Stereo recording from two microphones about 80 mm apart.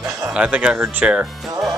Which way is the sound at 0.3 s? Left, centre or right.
Centre.